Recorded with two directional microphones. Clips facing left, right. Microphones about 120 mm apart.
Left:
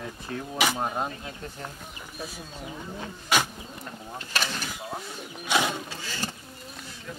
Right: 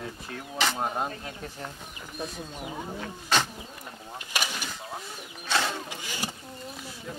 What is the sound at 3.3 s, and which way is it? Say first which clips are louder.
Bird: left 1 dB; 10° left (ahead or behind).